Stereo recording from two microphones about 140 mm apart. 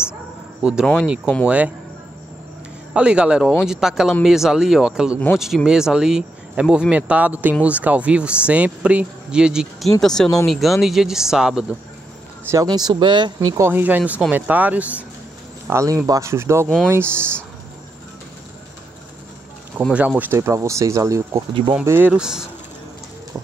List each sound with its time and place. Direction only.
0.6 s speech: 5° right (ahead or behind)
2.9 s speech: 5° right (ahead or behind)
12.4 s speech: 25° right (ahead or behind)
13.7 s speech: 15° right (ahead or behind)
15.6 s speech: 20° right (ahead or behind)
19.8 s speech: 10° right (ahead or behind)